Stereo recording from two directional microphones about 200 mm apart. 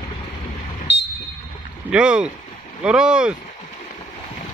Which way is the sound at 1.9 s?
5° right (ahead or behind).